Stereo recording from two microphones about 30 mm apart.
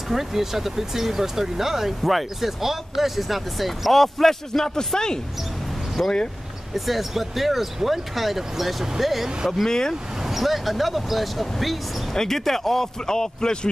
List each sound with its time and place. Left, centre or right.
0.1 s speech: centre
4.6 s speech: left
6.7 s speech: centre
9.7 s speech: left
10.2 s speech: centre
12.1 s speech: centre